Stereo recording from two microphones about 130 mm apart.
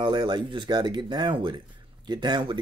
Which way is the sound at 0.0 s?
35° right (ahead or behind).